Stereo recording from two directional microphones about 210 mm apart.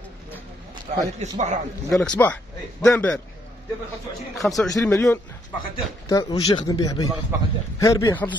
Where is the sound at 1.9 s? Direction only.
5° left (ahead or behind).